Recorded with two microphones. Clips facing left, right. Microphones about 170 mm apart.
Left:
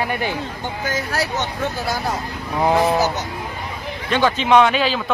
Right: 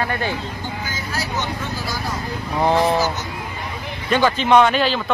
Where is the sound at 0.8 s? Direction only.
70° left (ahead or behind).